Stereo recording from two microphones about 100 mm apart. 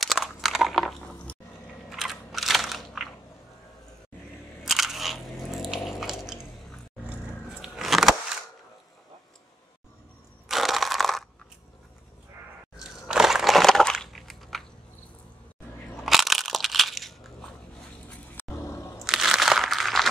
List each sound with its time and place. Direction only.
0.0 s crunch: centre (ahead or behind)
1.9 s biting: centre (ahead or behind)
4.6 s biting: centre (ahead or behind)
7.6 s a sound: 5° right (ahead or behind)
10.5 s crushing: centre (ahead or behind)
12.7 s crushing: 5° right (ahead or behind)
16.1 s crushing: centre (ahead or behind)
18.3 s roaring cats: 30° left (ahead or behind)
19.0 s crumpling: 5° right (ahead or behind)